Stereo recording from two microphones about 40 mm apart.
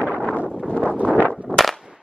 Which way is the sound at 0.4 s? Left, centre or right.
Right.